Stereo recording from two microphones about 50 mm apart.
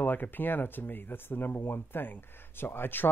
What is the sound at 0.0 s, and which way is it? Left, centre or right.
Speech, left.